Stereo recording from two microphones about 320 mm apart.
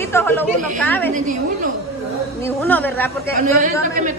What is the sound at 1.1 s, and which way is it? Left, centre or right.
Speech, right.